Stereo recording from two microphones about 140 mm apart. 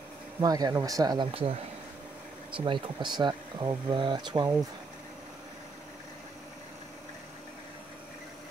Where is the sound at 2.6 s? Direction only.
35° right (ahead or behind).